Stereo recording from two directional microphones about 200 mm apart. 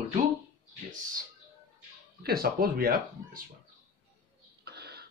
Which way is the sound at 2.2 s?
50° right (ahead or behind).